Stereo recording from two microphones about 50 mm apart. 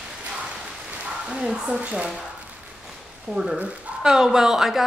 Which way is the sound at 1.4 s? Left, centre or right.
Centre.